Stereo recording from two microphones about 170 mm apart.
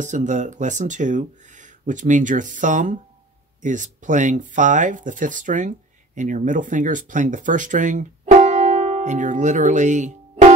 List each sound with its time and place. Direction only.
0.0 s speech: 45° right (ahead or behind)